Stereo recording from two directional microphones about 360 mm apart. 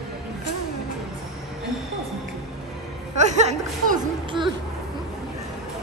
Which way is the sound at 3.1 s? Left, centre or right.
Centre.